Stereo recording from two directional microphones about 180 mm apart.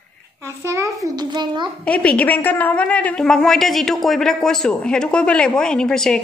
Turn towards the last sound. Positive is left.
turn(degrees=5)  # may be behind; listen again after turning